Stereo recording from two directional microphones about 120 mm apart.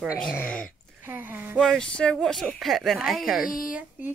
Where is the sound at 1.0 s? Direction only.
15° right (ahead or behind).